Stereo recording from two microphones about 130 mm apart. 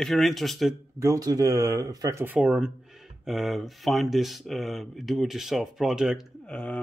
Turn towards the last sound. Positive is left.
turn(degrees=5)  # may be behind; listen again after turning